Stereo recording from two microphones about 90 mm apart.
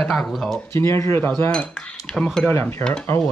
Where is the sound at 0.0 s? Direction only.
5° left (ahead or behind).